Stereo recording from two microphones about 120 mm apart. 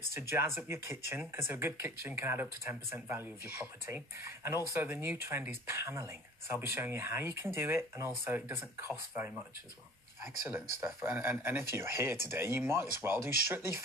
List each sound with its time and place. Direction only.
0.1 s speech: 20° right (ahead or behind)